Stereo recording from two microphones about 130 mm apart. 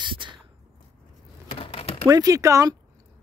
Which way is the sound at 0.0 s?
40° right (ahead or behind).